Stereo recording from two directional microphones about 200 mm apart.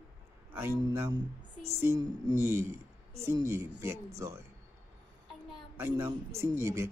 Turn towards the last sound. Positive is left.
turn(degrees=-15)  # may be behind; listen again after turning